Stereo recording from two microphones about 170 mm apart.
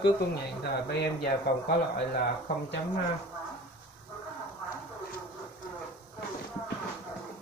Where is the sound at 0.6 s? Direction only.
70° left (ahead or behind).